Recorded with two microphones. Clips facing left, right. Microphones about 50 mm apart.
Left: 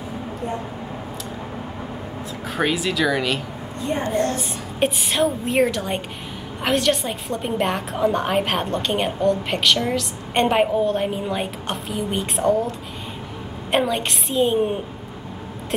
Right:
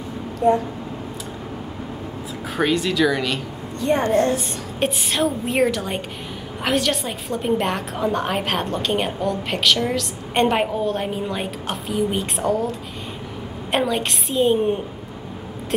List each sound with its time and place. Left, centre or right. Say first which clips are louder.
2.5 s a woman's voice: right 2 dB; centre
3.8 s a woman's voice: right 5 dB; right
4.3 s a woman's voice: right 3 dB; centre